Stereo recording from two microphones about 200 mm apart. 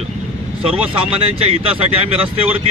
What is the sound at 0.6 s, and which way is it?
Speech, 30° right (ahead or behind).